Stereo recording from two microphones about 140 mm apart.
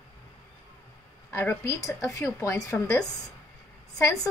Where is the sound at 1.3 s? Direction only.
15° left (ahead or behind).